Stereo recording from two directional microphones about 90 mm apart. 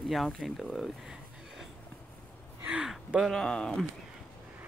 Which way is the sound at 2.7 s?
10° right (ahead or behind).